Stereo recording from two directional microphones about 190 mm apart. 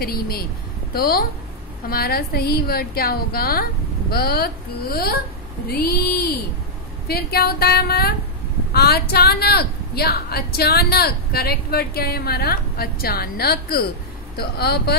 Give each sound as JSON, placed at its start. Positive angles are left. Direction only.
{"t": 0.0, "sound": "a woman's voice", "side_deg": 50}